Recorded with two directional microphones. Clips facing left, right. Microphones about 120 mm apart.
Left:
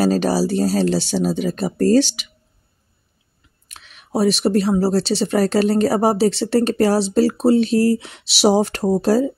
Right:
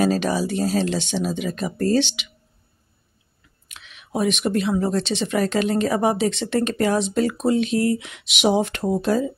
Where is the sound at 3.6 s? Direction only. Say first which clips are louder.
Left 1 dB; 40° left (ahead or behind).